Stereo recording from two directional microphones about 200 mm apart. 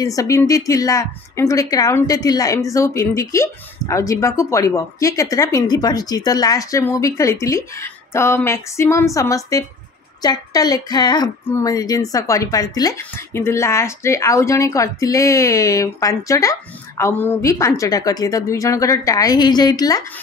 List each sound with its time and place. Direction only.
0.0 s speech: 15° left (ahead or behind)